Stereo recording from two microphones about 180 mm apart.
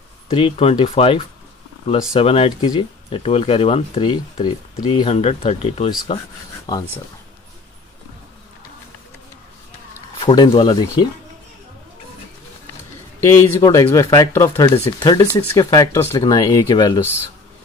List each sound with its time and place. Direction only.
0.3 s speech: 30° left (ahead or behind)
6.7 s speech: 20° left (ahead or behind)
10.1 s speech: 25° left (ahead or behind)
13.2 s a man's voice: 15° left (ahead or behind)